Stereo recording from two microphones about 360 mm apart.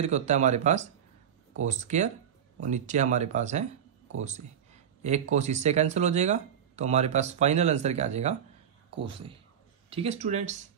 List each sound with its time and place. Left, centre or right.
0.0 s speech: centre
5.3 s speech: centre
9.8 s speech: centre